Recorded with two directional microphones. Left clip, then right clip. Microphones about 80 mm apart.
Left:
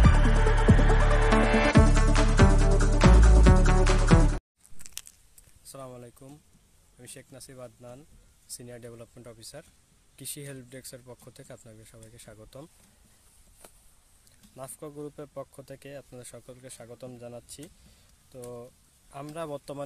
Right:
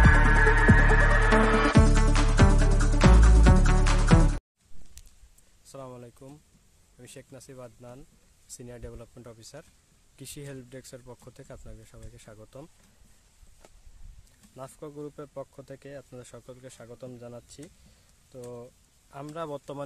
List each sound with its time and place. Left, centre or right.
0.3 s music: centre
5.7 s a sound: right
7.0 s speech: right
12.3 s speech: centre
14.5 s speech: right
14.9 s speech: right
16.8 s speech: right